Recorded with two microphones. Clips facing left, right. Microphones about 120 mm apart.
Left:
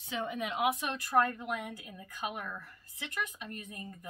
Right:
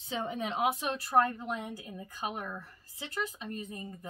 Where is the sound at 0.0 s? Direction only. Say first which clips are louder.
Right 1 dB; 30° right (ahead or behind).